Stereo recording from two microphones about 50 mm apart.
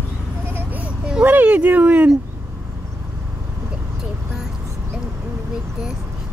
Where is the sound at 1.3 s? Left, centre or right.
Right.